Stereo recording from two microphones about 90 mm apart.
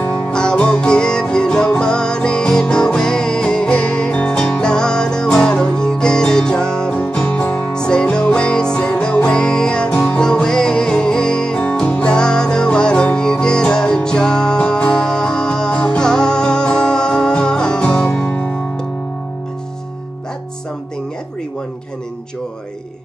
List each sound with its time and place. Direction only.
0.0 s music: 10° left (ahead or behind)